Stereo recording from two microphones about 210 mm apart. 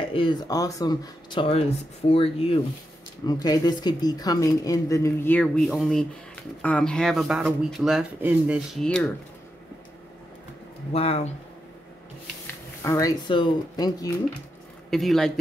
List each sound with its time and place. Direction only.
0.1 s speech: 20° left (ahead or behind); by 9.1 s 5° left (ahead or behind)
10.9 s speech: 30° left (ahead or behind)
12.8 s speech: 15° left (ahead or behind)
14.9 s speech: centre (ahead or behind)